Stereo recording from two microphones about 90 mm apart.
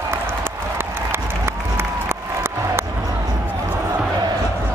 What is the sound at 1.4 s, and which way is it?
Crowd, 25° right (ahead or behind).